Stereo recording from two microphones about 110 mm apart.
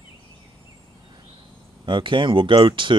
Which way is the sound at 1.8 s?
50° right (ahead or behind).